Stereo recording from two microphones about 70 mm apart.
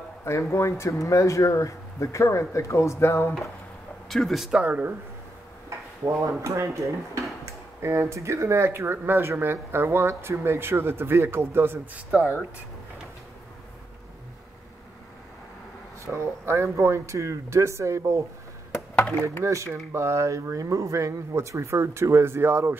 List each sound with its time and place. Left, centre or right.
0.2 s speech: left
4.1 s speech: centre
4.5 s speech: centre
5.7 s drawer open or close: right
6.4 s speech: right
7.4 s a sound: right
8.1 s speech: right
16.1 s speech: right
18.9 s chop: centre
19.4 s speech: right